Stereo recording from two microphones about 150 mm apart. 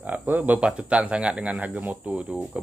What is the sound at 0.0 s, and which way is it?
Speech, 10° right (ahead or behind).